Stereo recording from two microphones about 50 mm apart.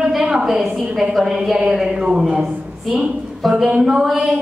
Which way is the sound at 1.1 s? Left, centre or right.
Centre.